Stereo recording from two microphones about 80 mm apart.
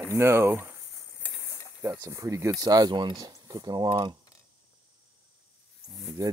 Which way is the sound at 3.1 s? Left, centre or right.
Right.